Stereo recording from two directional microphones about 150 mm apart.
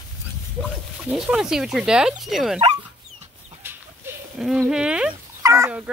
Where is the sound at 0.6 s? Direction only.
5° right (ahead or behind).